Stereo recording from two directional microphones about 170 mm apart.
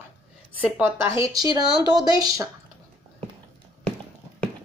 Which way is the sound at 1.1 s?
20° right (ahead or behind).